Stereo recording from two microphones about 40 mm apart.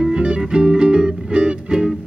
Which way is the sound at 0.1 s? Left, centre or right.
Right.